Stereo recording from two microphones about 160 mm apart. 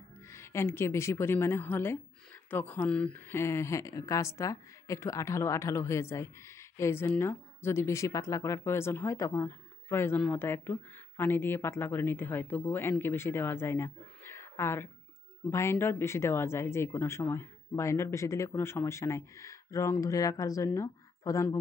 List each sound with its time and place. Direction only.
0.3 s speech: 15° left (ahead or behind)